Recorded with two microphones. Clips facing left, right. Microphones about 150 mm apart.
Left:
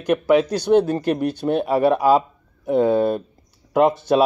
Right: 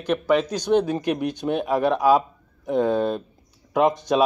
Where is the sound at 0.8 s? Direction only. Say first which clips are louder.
Left 3 dB; 15° right (ahead or behind).